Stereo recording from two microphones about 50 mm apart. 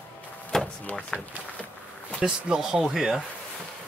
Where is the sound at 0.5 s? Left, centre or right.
Centre.